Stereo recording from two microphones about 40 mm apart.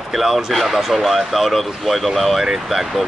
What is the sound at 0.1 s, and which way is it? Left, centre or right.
Speech, centre.